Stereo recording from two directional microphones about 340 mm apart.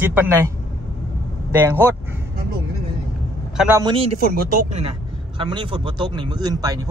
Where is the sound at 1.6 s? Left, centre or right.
Centre.